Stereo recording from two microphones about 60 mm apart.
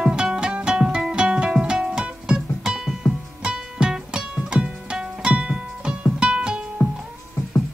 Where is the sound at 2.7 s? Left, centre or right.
Centre.